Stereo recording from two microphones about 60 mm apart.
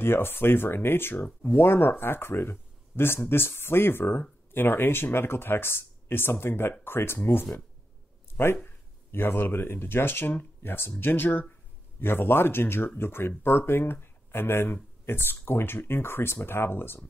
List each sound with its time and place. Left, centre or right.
0.0 s speech: left
8.6 s speech: left